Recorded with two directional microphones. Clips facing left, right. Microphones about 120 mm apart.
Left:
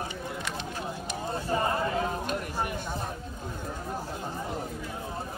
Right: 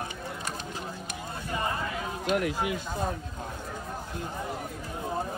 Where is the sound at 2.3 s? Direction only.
90° right.